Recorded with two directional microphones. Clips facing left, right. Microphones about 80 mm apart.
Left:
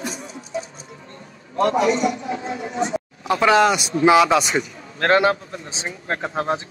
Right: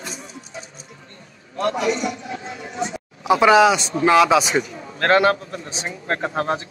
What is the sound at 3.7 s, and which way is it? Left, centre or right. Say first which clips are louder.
Speech: left 1 dB; centre.